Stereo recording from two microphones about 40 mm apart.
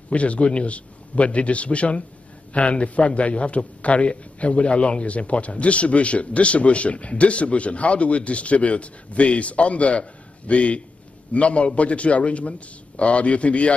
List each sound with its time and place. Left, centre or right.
0.1 s a man's voice: left